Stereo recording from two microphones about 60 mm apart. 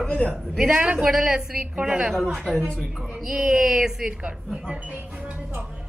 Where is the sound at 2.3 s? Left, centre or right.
Centre.